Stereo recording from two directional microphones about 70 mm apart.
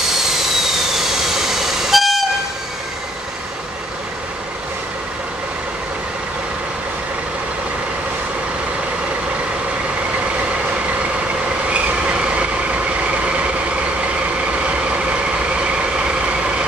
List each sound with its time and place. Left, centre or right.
0.2 s vehicle: centre
11.7 s train: centre
14.0 s vehicle: centre